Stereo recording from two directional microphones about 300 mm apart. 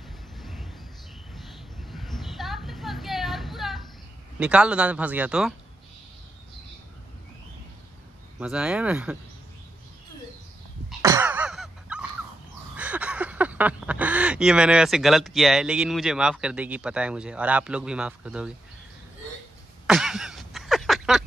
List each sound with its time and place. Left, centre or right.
0.4 s a sound: centre
4.4 s speech: centre
8.4 s speech: centre
10.9 s throat clearing: centre
12.7 s speech: centre
19.9 s a sound: centre